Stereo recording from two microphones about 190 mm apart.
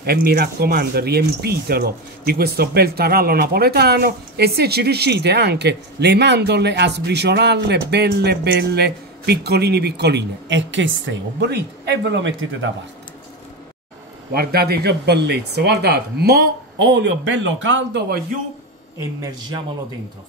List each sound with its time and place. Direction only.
0.0 s speech: 55° right (ahead or behind); by 12.4 s 75° right (ahead or behind)
14.3 s speech: 55° right (ahead or behind)